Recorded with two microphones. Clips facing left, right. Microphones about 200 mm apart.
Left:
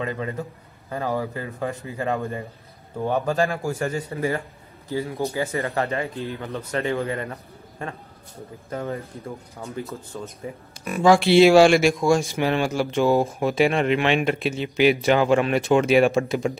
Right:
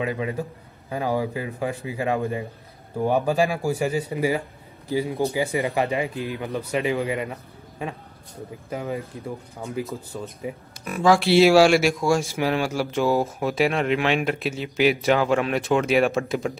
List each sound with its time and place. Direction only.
0.0 s a man's voice: 10° right (ahead or behind)